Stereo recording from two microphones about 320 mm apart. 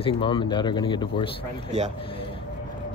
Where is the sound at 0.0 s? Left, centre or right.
Centre.